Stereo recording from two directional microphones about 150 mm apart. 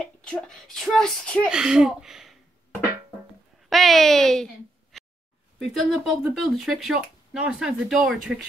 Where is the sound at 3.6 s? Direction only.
Centre (ahead or behind).